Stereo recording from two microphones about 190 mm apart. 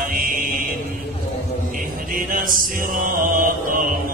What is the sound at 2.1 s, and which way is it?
Music, 45° right (ahead or behind).